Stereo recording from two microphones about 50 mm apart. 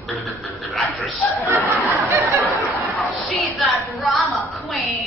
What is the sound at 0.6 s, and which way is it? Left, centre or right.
Speech, centre.